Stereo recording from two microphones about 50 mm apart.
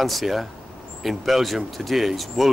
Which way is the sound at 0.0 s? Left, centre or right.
Centre.